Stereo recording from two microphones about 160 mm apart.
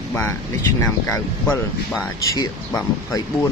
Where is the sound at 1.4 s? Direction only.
5° left (ahead or behind).